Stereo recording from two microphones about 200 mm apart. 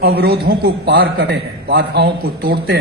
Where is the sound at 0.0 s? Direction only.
50° right (ahead or behind).